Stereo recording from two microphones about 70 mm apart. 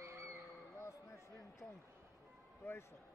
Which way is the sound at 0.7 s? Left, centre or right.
Left.